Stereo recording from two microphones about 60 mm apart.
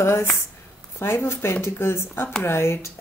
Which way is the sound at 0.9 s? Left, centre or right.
Left.